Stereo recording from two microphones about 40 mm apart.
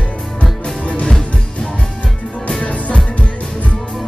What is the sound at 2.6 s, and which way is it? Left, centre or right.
Music, left.